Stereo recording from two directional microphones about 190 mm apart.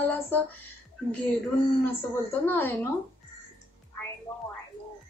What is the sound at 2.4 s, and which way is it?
Speech, 10° left (ahead or behind).